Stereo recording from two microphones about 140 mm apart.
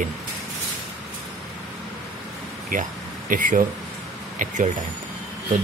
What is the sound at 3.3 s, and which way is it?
Speech, 70° right (ahead or behind).